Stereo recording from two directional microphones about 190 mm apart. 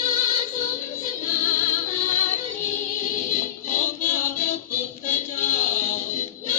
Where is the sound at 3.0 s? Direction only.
45° left (ahead or behind).